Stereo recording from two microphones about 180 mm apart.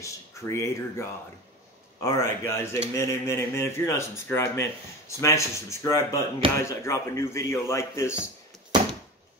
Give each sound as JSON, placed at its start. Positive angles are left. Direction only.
{"t": 0.0, "sound": "speech", "side_deg": 15}